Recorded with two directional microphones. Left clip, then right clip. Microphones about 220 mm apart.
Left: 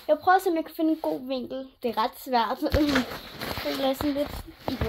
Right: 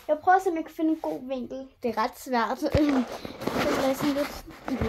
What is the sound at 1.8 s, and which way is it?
Speech, 5° right (ahead or behind).